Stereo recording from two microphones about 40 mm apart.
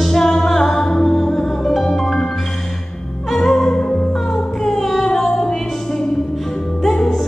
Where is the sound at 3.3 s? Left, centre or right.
Centre.